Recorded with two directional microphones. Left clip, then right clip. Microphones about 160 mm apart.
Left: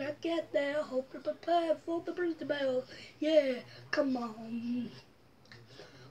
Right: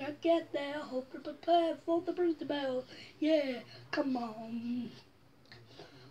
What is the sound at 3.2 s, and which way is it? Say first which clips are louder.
Speech: left 3 dB; 15° left (ahead or behind).